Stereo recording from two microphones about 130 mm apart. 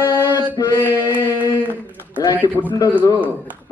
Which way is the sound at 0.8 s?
15° right (ahead or behind).